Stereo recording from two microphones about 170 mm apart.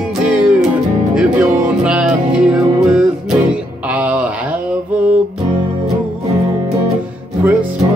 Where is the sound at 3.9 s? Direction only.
10° right (ahead or behind).